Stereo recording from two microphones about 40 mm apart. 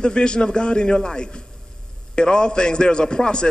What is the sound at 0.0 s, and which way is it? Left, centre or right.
A man's voice, left.